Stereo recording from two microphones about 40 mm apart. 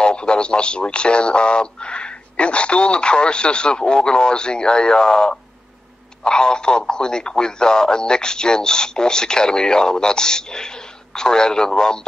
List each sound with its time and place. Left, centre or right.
0.0 s speech: left